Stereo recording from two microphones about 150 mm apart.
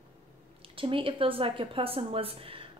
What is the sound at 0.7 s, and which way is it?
Speech, 35° right (ahead or behind).